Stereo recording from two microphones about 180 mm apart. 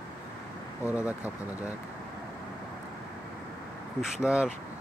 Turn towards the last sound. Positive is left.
turn(degrees=-5)  # may be behind; listen again after turning